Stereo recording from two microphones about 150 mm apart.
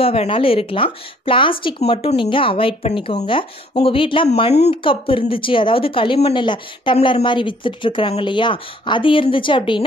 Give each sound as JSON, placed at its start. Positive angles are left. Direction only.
{"t": 0.0, "sound": "speech", "side_deg": 40}
{"t": 4.4, "sound": "speech", "side_deg": 45}